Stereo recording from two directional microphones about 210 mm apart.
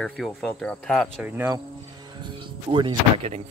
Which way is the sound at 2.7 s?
25° right (ahead or behind).